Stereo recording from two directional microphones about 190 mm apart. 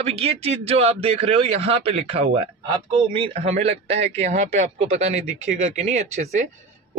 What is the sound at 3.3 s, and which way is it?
A man's voice, 35° right (ahead or behind).